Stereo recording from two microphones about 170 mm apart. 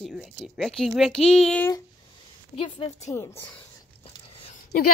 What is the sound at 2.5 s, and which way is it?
Speech, 30° left (ahead or behind).